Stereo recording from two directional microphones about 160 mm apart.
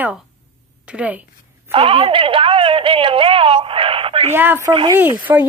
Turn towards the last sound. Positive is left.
turn(degrees=-10)  # may be behind; listen again after turning